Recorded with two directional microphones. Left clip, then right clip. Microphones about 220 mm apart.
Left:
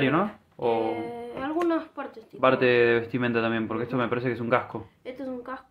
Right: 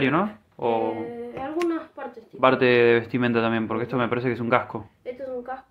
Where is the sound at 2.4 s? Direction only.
15° right (ahead or behind).